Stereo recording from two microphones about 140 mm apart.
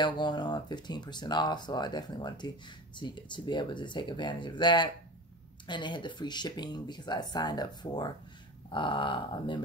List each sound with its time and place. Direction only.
0.0 s speech: 35° left (ahead or behind)